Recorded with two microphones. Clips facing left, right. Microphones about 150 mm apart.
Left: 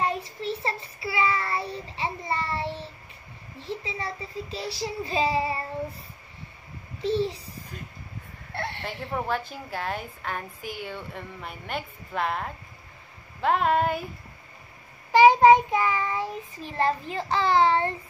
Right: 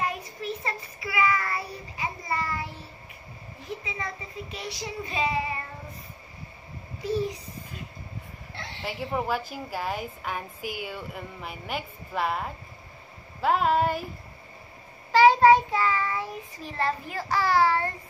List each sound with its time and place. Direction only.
0.0 s child singing: 30° left (ahead or behind)
3.6 s a child's voice: 30° left (ahead or behind)
7.0 s a child's voice: 25° left (ahead or behind)
8.5 s a sound: 60° left (ahead or behind)
9.0 s a woman's voice: 10° right (ahead or behind)
15.1 s a child's voice: 20° left (ahead or behind)